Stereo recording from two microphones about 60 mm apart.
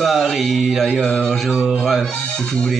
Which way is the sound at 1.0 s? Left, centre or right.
Centre.